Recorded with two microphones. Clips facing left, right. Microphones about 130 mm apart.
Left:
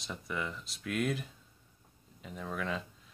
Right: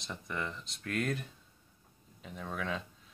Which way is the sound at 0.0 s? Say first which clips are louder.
Left 1 dB; 5° left (ahead or behind).